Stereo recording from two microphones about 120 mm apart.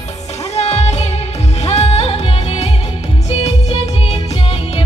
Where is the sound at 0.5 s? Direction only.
60° left (ahead or behind).